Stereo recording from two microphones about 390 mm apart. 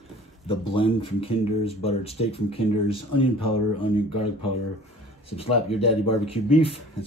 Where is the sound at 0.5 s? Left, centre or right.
Centre.